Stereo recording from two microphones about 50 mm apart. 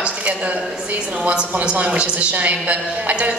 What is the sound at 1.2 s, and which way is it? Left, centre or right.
A woman's voice, right.